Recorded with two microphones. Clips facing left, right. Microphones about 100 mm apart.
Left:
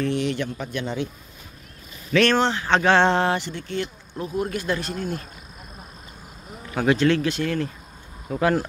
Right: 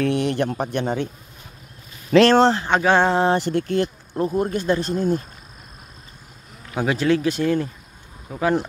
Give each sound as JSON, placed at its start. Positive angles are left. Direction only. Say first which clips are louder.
{"t": 0.0, "sound": "speech", "louder": "right 4 dB", "side_deg": -55}
{"t": 2.0, "sound": "speech", "louder": "right 6 dB", "side_deg": -30}
{"t": 2.7, "sound": "speech", "louder": "right 1 dB", "side_deg": -10}
{"t": 3.3, "sound": "speech", "louder": "right 8 dB", "side_deg": -45}
{"t": 4.5, "sound": "speech", "louder": "right 5 dB", "side_deg": -30}
{"t": 6.7, "sound": "speech", "louder": "even", "side_deg": -10}
{"t": 8.3, "sound": "speech", "louder": "even", "side_deg": -5}